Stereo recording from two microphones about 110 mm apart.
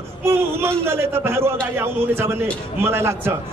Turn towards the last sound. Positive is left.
turn(degrees=-20)  # may be behind; listen again after turning